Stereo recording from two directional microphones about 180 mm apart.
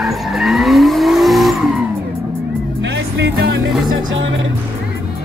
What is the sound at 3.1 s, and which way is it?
Music, 75° right (ahead or behind).